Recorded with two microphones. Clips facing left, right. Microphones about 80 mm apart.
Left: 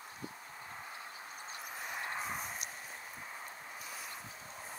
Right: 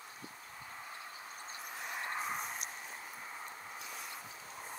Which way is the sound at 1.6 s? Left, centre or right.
Centre.